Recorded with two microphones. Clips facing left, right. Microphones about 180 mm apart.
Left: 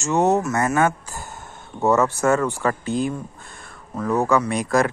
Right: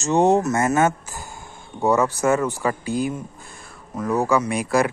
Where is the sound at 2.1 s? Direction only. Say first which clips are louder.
Even; 15° right (ahead or behind).